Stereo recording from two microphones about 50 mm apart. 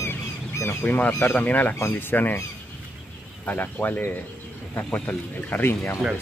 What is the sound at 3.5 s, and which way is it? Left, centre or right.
Speech, left.